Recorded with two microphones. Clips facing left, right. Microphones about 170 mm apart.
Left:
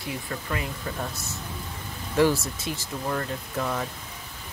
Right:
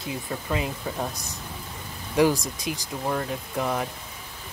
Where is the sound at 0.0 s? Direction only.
20° right (ahead or behind).